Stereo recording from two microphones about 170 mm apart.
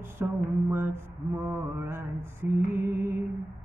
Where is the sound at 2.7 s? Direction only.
15° right (ahead or behind).